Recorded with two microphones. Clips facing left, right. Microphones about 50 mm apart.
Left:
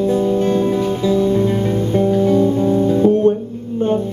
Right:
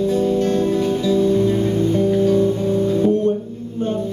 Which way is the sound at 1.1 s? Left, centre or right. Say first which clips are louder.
Left 1 dB; left.